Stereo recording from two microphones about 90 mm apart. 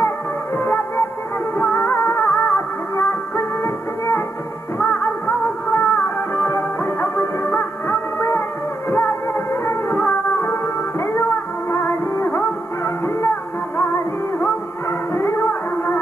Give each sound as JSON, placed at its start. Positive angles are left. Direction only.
{"t": 0.6, "sound": "music", "side_deg": 25}
{"t": 4.7, "sound": "music", "side_deg": 15}